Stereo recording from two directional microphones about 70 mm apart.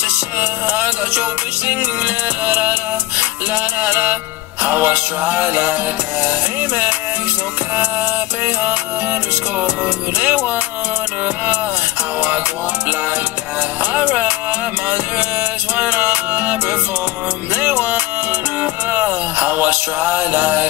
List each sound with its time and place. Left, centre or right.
0.4 s music: right
10.1 s music: right
13.9 s music: right
15.7 s music: right
17.6 s music: right